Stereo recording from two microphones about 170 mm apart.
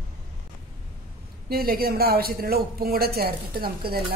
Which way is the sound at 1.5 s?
65° right (ahead or behind).